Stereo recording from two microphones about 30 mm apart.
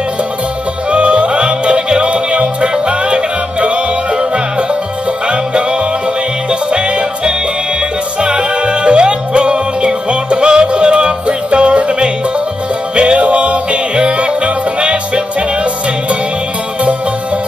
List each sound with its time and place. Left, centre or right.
0.8 s music: right